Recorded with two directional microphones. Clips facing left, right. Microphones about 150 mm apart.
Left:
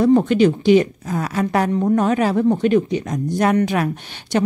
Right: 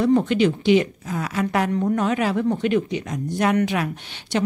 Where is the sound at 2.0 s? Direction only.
40° left (ahead or behind).